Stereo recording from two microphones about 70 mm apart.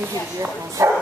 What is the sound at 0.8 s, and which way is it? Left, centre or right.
Bow-wow, right.